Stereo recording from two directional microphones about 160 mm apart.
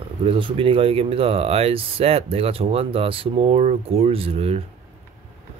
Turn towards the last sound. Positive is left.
turn(degrees=-40)  # may be behind; listen again after turning